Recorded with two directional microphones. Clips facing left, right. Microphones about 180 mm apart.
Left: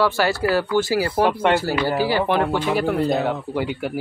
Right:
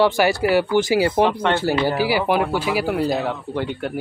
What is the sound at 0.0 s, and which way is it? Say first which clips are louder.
Speech: right 2 dB; 15° right (ahead or behind).